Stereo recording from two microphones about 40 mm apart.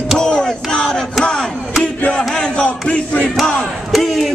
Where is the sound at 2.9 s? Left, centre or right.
Left.